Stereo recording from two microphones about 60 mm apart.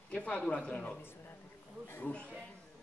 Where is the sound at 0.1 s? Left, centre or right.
Left.